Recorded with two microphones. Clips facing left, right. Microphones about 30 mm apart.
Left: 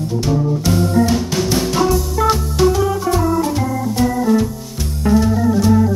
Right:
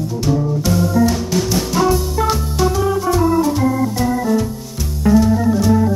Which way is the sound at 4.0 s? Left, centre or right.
Centre.